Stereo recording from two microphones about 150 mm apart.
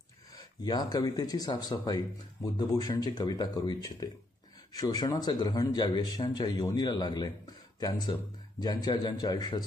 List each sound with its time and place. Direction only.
0.7 s speech: 25° left (ahead or behind)